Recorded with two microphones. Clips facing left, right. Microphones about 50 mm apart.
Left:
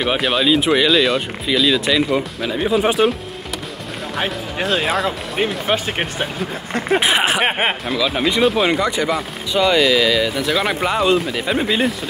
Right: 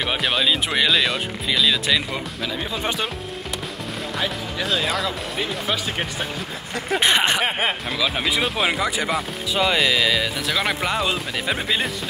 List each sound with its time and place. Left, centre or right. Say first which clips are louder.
0.0 s speech: left 4 dB; centre
2.4 s speech: left 8 dB; centre
4.2 s speech: left 5 dB; left
7.0 s speech: even; centre
7.4 s speech: left 4 dB; left
7.9 s speech: left 4 dB; centre